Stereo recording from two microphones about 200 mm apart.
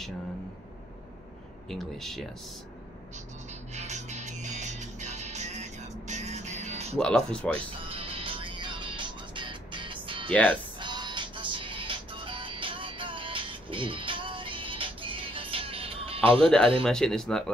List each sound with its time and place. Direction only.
1.7 s speech: centre (ahead or behind)
3.7 s music: 35° right (ahead or behind)
7.0 s speech: 5° left (ahead or behind)
7.8 s music: 25° right (ahead or behind)
10.3 s speech: 5° left (ahead or behind)
10.8 s music: 20° right (ahead or behind)
16.8 s speech: centre (ahead or behind)